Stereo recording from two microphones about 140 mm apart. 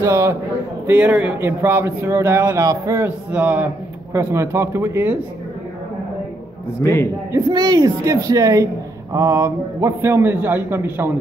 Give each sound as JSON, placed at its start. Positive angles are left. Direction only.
{"t": 0.0, "sound": "speech", "side_deg": -20}
{"t": 6.8, "sound": "a man's voice", "side_deg": 20}
{"t": 7.3, "sound": "speech", "side_deg": -30}